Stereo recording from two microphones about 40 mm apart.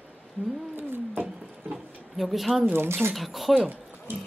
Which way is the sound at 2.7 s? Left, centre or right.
Right.